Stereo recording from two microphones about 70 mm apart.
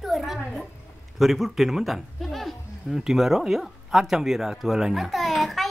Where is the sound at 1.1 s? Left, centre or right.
Centre.